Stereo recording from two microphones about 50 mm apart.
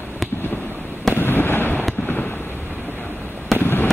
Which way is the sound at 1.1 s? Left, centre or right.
Left.